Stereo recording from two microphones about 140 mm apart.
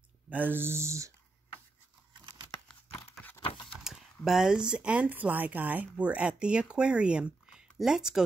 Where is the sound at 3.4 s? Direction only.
40° left (ahead or behind).